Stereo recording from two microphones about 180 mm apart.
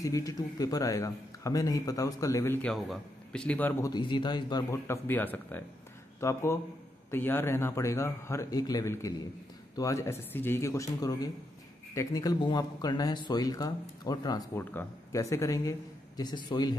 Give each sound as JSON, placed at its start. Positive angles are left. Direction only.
{"t": 0.0, "sound": "a man's voice", "side_deg": 20}
{"t": 3.9, "sound": "a man's voice", "side_deg": 25}